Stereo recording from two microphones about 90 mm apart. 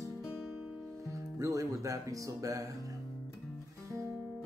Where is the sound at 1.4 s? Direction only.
35° right (ahead or behind).